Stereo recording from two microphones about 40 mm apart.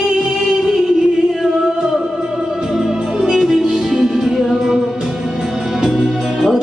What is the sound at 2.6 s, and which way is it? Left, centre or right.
Music, centre.